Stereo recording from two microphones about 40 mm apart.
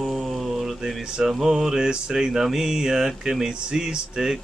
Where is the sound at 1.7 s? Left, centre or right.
Centre.